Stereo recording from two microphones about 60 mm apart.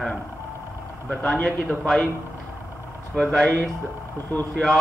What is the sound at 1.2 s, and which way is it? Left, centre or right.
Speech, centre.